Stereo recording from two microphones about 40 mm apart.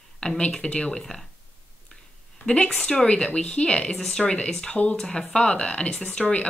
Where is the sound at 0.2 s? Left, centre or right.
Left.